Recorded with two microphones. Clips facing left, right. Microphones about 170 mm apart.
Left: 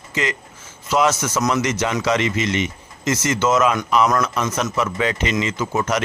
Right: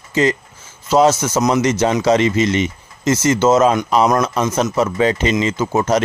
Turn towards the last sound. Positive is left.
turn(degrees=-30)  # may be behind; listen again after turning